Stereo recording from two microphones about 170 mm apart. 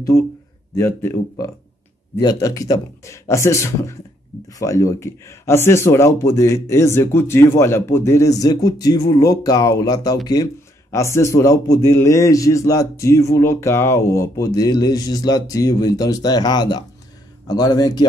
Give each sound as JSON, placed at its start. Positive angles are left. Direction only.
{"t": 0.7, "sound": "speech", "side_deg": 15}
{"t": 2.1, "sound": "a man's voice", "side_deg": 20}